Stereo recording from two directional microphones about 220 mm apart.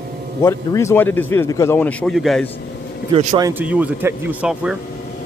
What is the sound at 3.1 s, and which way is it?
Speech, 20° right (ahead or behind).